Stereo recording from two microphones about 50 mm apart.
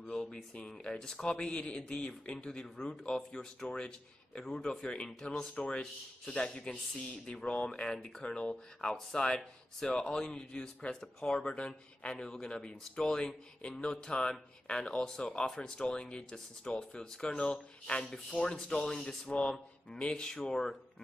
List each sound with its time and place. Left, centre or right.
0.0 s speech: centre
18.0 s speech: centre